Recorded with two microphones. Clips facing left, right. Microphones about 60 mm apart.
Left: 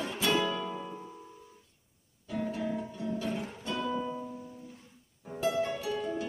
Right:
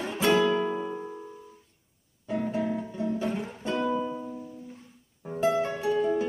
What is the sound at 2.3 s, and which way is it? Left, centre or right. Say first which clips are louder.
Music: right 4 dB; right.